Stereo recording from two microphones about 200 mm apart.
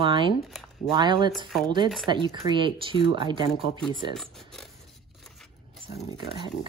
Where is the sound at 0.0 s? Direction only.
25° right (ahead or behind).